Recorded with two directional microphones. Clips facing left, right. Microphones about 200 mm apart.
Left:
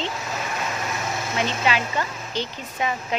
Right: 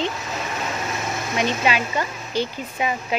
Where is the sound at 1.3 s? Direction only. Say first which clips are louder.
Right 3 dB; 15° right (ahead or behind).